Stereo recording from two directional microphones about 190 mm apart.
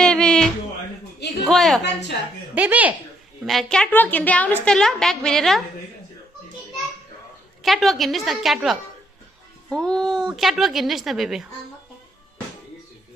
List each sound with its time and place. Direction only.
0.0 s music: 5° left (ahead or behind)
1.4 s a woman's voice: centre (ahead or behind)
1.8 s a woman's voice: 60° left (ahead or behind)
2.5 s a woman's voice: 10° right (ahead or behind)
7.6 s a woman's voice: centre (ahead or behind)